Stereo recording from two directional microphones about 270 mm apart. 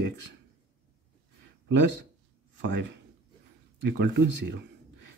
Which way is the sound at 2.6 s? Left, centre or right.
Right.